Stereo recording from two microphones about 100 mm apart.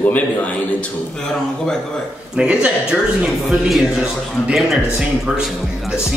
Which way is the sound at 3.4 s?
Centre (ahead or behind).